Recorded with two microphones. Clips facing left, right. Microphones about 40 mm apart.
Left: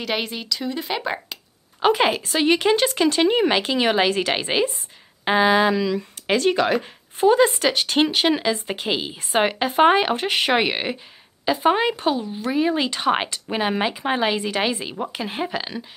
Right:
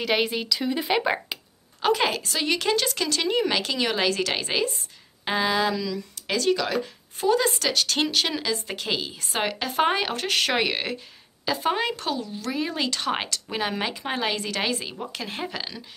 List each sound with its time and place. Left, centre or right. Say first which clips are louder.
0.0 s a woman's voice: right 2 dB; centre
1.8 s speech: left 4 dB; left